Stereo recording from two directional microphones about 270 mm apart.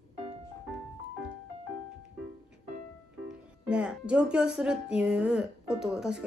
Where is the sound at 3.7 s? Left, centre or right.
Centre.